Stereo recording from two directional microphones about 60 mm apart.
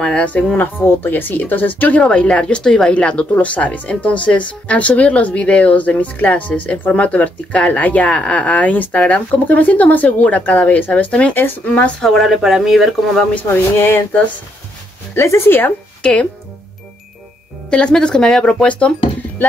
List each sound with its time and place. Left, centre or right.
0.0 s speech: left
0.6 s speech: left
2.0 s a woman's voice: centre
11.3 s a woman's voice: left
12.2 s speech: centre
13.5 s speech: left
15.1 s speech: left
16.0 s speech: centre
17.6 s speech: centre